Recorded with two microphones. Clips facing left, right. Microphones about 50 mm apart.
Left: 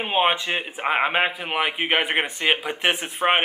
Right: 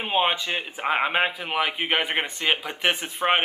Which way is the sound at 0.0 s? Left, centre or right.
Centre.